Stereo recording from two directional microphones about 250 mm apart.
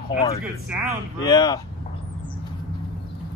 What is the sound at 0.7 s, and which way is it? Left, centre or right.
Speech, centre.